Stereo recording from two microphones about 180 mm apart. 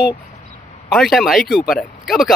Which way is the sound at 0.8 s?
Centre (ahead or behind).